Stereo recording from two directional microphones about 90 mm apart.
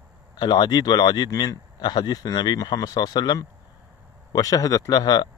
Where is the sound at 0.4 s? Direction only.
50° left (ahead or behind).